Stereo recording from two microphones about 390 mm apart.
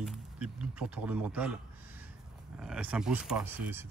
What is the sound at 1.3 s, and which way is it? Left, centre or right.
Speech, centre.